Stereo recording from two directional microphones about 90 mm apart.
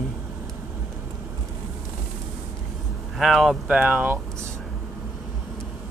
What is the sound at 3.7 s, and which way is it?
Speech, 10° right (ahead or behind).